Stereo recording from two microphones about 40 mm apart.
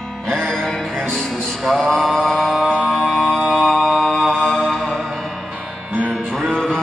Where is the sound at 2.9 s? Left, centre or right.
Centre.